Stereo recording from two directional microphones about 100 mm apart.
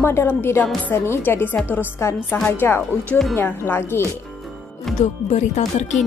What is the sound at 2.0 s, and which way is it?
Speech, 25° left (ahead or behind).